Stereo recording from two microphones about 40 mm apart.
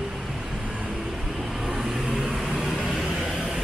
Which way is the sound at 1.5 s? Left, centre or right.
Centre.